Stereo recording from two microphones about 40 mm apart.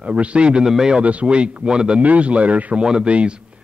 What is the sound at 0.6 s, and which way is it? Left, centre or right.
Speech, centre.